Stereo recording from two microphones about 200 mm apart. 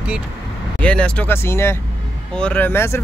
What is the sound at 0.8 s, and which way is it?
Speech, 5° left (ahead or behind).